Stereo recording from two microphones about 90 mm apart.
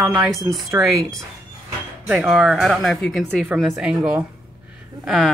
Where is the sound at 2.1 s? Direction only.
10° right (ahead or behind).